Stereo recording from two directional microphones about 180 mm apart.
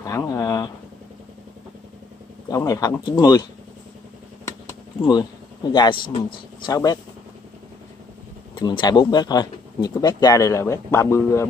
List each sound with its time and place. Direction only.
0.0 s speech: 20° left (ahead or behind)
2.5 s speech: 20° left (ahead or behind)
5.0 s speech: 25° left (ahead or behind)
8.5 s speech: 25° left (ahead or behind)